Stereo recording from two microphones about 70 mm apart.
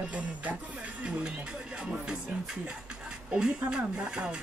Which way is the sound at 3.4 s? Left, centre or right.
Centre.